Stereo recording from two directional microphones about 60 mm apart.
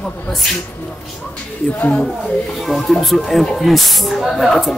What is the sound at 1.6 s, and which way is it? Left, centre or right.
Speech, left.